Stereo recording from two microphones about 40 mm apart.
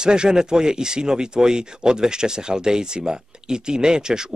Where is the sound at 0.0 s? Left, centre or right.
Centre.